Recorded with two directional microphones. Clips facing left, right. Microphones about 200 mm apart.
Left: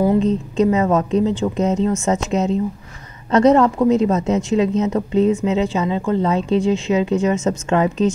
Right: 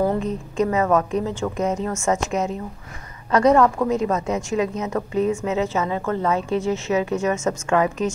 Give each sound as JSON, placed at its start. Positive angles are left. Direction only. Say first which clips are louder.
{"t": 0.0, "sound": "a woman's voice", "louder": "left 6 dB", "side_deg": 20}